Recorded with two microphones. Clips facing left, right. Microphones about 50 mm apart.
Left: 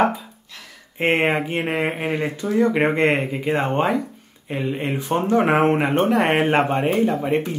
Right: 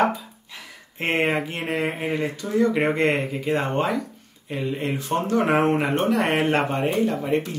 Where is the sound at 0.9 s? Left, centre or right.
Left.